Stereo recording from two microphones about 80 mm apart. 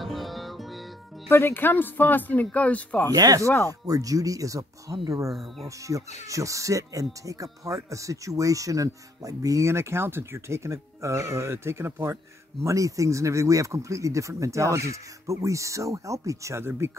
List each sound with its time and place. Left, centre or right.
0.0 s music: centre
1.3 s speech: left
3.1 s speech: right
5.3 s speech: centre
5.7 s speech: right